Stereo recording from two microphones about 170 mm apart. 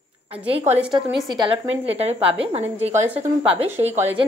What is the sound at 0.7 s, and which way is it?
Speech, 5° right (ahead or behind).